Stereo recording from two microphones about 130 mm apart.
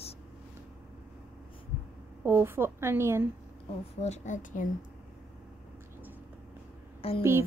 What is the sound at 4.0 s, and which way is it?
Speech, 65° left (ahead or behind).